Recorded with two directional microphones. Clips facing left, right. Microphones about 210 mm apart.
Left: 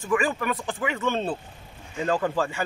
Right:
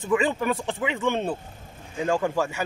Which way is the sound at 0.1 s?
25° right (ahead or behind).